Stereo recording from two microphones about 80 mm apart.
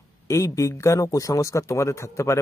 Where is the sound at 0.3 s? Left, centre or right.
Left.